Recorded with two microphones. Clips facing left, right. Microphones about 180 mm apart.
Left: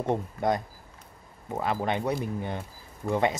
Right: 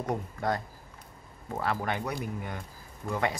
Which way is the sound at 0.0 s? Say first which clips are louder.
Left 4 dB; 25° left (ahead or behind).